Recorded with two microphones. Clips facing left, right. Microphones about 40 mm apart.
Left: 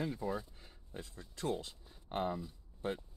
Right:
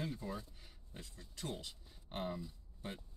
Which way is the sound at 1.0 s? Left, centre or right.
Left.